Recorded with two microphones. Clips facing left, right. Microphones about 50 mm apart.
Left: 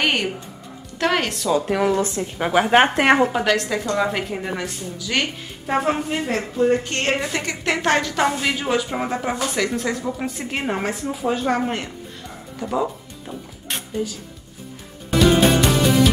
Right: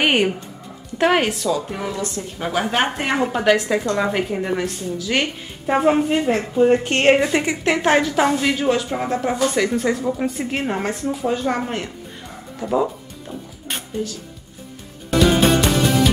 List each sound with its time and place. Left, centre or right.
0.0 s speech: centre
2.0 s a woman's voice: left
3.3 s a woman's voice: centre; by 7.2 s right
7.6 s a woman's voice: centre
12.5 s music: centre